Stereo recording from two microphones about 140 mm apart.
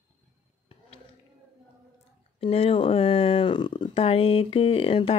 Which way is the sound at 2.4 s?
40° left (ahead or behind).